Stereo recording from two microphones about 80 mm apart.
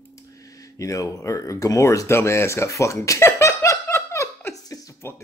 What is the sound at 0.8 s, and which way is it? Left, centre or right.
Speech, left.